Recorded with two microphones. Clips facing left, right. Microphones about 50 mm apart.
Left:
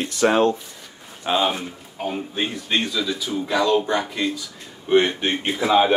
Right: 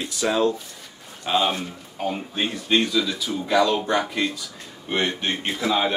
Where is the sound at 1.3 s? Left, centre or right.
Centre.